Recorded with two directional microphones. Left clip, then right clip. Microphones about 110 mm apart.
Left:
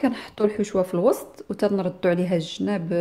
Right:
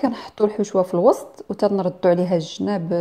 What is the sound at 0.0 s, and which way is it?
A woman's voice, 20° right (ahead or behind).